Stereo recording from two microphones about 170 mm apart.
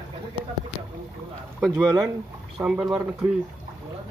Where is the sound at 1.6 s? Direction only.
10° right (ahead or behind).